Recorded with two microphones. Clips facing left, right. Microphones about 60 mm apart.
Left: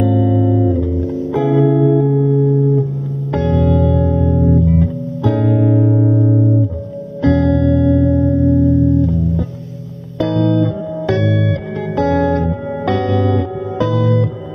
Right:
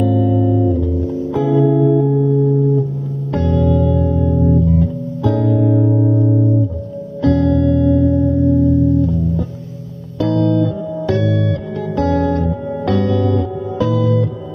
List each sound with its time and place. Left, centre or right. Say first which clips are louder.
0.0 s music: left 1 dB; left
1.7 s music: left 1 dB; left
3.7 s music: left 1 dB; left
4.5 s music: left 1 dB; left
10.1 s music: even; left